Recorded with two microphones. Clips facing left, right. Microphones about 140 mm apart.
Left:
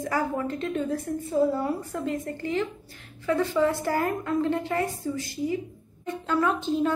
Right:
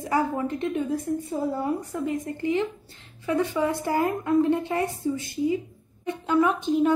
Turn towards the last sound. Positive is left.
turn(degrees=-20)  # may be behind; listen again after turning